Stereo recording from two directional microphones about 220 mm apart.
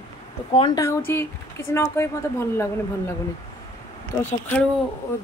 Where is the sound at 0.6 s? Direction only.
15° left (ahead or behind).